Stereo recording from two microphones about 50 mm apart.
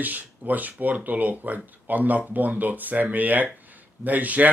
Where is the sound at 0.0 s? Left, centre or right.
Right.